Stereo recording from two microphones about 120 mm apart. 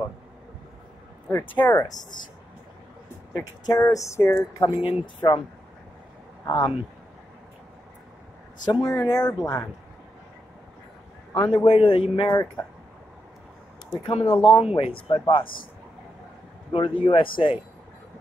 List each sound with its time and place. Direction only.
1.3 s speech: 15° left (ahead or behind)
2.0 s speech: 90° left
3.3 s speech: 25° left (ahead or behind)
4.6 s speech: 45° left (ahead or behind)
6.4 s speech: 40° left (ahead or behind)
8.6 s speech: 35° left (ahead or behind)
11.3 s speech: 50° left (ahead or behind)
12.3 s speech: 30° left (ahead or behind)
14.2 s speech: 40° left (ahead or behind)
14.6 s speech: 55° left (ahead or behind)
16.7 s speech: 45° left (ahead or behind)